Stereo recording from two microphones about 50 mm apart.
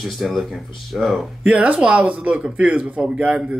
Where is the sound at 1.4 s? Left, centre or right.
Right.